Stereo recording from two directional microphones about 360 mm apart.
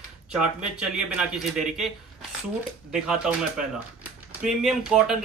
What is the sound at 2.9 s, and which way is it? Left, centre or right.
Speech, centre.